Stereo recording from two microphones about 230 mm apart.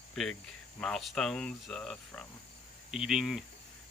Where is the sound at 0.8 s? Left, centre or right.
Centre.